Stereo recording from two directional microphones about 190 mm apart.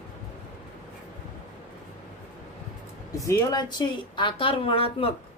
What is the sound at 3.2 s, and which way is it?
A woman's voice, 20° left (ahead or behind).